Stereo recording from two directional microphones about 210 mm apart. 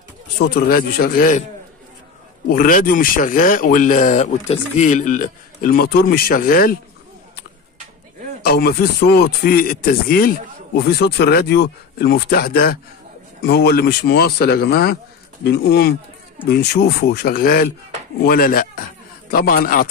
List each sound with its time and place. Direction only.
0.4 s speech: 45° left (ahead or behind)
2.5 s speech: 40° left (ahead or behind)
8.4 s speech: 45° left (ahead or behind)